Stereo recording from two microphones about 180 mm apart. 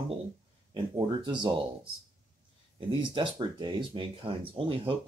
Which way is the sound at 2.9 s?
25° right (ahead or behind).